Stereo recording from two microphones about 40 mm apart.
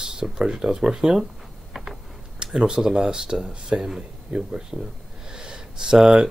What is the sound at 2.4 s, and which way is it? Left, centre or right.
Speech, centre.